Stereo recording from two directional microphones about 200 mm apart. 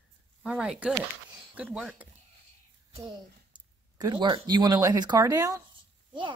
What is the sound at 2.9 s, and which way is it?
Speech, 25° right (ahead or behind).